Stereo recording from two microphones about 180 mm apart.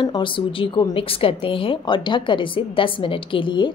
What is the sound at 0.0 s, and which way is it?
Speech, 25° left (ahead or behind).